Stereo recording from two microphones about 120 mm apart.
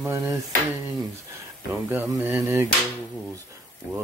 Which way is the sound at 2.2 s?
20° right (ahead or behind).